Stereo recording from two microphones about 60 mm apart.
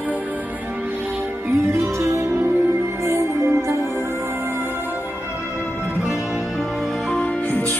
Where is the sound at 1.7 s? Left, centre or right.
Right.